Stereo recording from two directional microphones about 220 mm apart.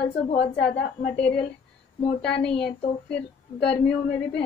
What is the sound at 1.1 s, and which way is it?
Speech, 5° left (ahead or behind).